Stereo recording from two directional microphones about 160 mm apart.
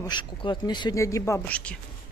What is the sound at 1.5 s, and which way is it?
Speech, 10° left (ahead or behind).